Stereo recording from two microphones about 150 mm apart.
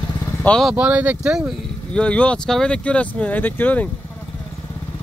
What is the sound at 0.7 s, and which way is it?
Speech, 10° right (ahead or behind).